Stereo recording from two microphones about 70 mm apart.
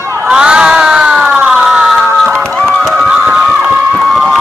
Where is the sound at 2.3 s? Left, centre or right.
Right.